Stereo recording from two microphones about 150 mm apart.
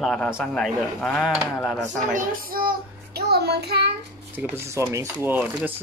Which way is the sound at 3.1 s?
90° right.